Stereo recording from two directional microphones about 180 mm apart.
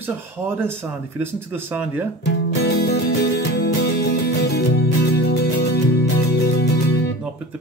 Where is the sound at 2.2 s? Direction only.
70° left (ahead or behind).